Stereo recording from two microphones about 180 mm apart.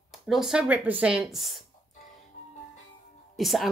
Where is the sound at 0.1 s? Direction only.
Centre (ahead or behind).